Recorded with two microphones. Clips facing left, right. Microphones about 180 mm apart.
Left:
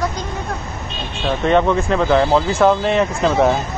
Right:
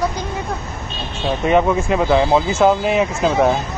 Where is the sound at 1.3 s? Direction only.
10° right (ahead or behind).